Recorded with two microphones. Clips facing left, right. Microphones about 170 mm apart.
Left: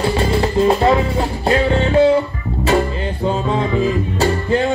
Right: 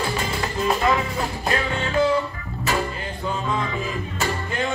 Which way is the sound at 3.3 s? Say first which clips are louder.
Left 7 dB; 30° left (ahead or behind).